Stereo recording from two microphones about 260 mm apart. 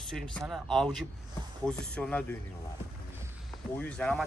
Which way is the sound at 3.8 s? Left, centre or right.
Centre.